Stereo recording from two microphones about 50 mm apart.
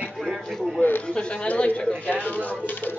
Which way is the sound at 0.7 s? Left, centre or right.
Left.